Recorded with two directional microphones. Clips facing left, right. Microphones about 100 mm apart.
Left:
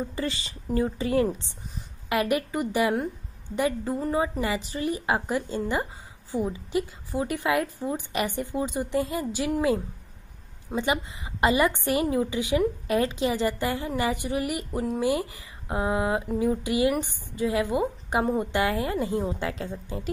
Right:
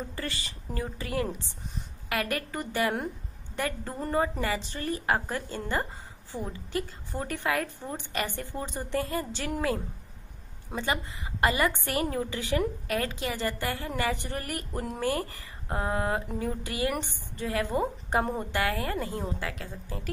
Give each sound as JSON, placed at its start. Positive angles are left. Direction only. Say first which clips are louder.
{"t": 0.1, "sound": "a woman's voice", "louder": "left 5 dB", "side_deg": 20}
{"t": 10.8, "sound": "a woman's voice", "louder": "left 4 dB", "side_deg": 20}